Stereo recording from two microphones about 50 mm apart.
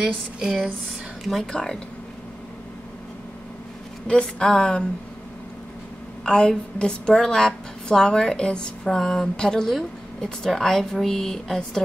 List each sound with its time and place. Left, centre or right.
0.0 s a sound: centre
1.2 s speech: centre
1.5 s a woman's voice: centre
4.1 s a woman's voice: centre
6.2 s a woman's voice: centre